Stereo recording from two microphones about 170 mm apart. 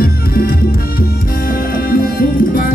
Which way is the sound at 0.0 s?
60° left (ahead or behind).